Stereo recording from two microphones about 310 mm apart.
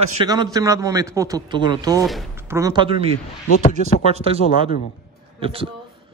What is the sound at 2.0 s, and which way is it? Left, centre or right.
Speech, centre.